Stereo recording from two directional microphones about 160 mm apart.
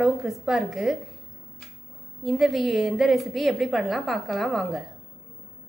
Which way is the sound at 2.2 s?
Centre (ahead or behind).